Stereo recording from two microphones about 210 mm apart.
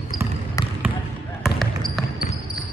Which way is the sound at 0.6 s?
15° left (ahead or behind).